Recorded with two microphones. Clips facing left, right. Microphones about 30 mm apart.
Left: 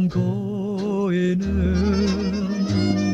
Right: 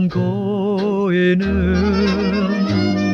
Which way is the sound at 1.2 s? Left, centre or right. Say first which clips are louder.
Right 6 dB; right.